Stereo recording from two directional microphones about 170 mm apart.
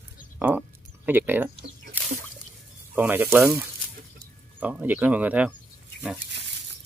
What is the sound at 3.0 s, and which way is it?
Speech, 10° right (ahead or behind).